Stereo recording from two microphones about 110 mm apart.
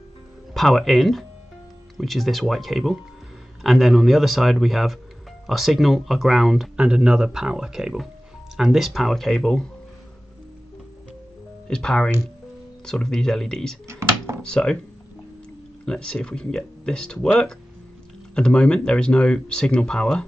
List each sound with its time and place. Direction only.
0.6 s speech: centre (ahead or behind)
11.6 s speech: 5° left (ahead or behind)
13.8 s a sound: 25° right (ahead or behind)
14.4 s speech: 5° left (ahead or behind)
15.8 s speech: 5° left (ahead or behind)
18.3 s speech: 10° left (ahead or behind)